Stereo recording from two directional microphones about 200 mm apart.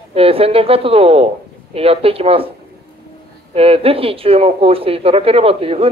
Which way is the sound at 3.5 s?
30° right (ahead or behind).